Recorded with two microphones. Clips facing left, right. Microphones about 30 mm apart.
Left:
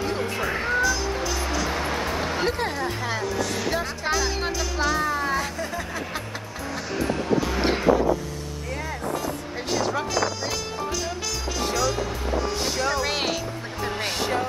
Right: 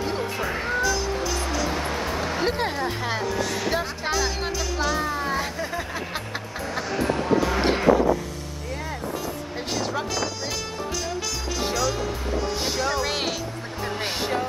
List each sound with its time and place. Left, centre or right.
0.0 s music: centre
2.4 s speech: centre
5.4 s speech: centre
6.7 s basketball bounce: centre
7.3 s music: centre
9.7 s music: centre
11.7 s music: centre
12.6 s speech: centre